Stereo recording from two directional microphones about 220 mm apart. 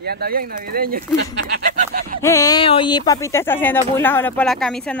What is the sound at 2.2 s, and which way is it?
Speech, 15° left (ahead or behind).